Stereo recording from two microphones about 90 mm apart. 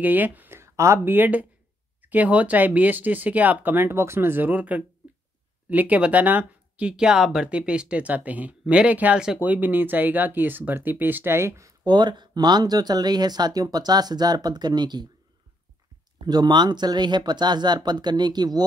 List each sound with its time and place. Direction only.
0.0 s speech: 20° right (ahead or behind)
11.8 s speech: 55° right (ahead or behind)
16.2 s speech: 50° right (ahead or behind)